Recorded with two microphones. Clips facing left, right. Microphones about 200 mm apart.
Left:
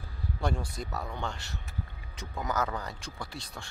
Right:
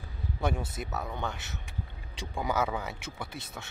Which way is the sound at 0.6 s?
20° right (ahead or behind).